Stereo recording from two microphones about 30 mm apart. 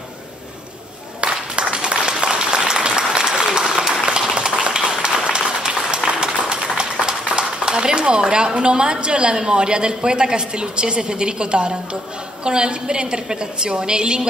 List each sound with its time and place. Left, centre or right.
1.2 s applause: right
6.0 s a woman's voice: right